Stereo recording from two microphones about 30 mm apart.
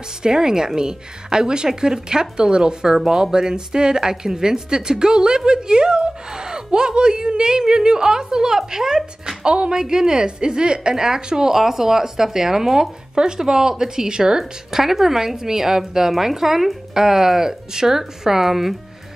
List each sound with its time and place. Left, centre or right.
0.2 s speech: right
14.7 s speech: centre